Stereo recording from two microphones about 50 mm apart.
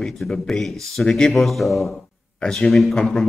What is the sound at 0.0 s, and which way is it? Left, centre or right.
A man's voice, centre.